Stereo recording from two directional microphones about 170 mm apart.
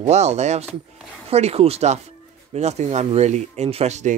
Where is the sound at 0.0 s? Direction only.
40° right (ahead or behind).